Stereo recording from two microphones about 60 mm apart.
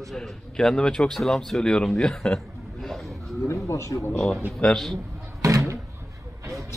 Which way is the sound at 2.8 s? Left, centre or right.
Centre.